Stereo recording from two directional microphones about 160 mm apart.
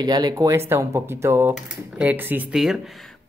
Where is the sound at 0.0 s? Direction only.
25° right (ahead or behind); by 2.8 s 5° right (ahead or behind).